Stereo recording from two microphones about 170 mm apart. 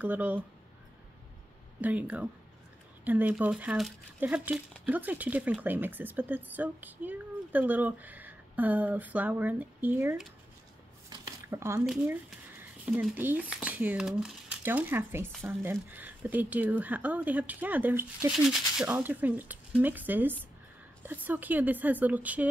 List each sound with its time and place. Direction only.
0.0 s speech: 10° right (ahead or behind)
1.8 s speech: 10° right (ahead or behind)
11.1 s a sound: 15° right (ahead or behind)
12.9 s speech: 10° right (ahead or behind)